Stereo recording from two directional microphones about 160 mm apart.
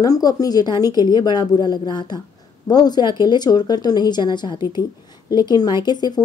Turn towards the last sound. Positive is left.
turn(degrees=25)  # may be behind; listen again after turning